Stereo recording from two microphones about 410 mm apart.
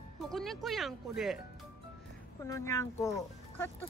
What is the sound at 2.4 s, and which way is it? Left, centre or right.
Speech, centre.